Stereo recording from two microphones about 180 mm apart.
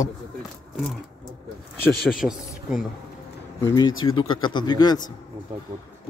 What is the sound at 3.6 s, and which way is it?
A man's voice, 20° left (ahead or behind).